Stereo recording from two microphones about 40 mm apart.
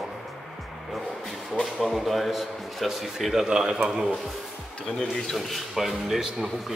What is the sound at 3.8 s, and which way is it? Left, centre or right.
Speech, right.